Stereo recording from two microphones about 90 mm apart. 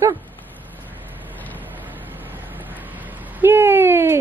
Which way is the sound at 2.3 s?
20° right (ahead or behind).